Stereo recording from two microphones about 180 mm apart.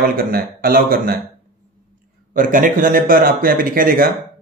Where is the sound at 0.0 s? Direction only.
55° right (ahead or behind).